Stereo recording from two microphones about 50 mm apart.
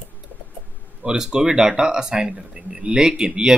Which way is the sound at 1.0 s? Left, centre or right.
Centre.